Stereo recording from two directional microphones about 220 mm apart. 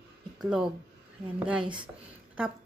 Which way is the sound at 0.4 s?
5° right (ahead or behind).